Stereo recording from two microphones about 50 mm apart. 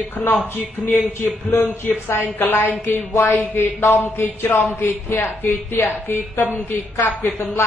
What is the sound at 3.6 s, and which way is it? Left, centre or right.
Speech, left.